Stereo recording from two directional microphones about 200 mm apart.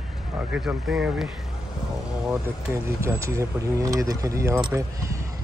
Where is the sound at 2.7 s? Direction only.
15° right (ahead or behind).